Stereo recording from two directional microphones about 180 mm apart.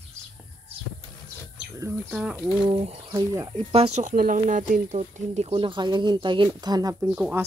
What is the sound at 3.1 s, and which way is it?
Speech, 20° right (ahead or behind).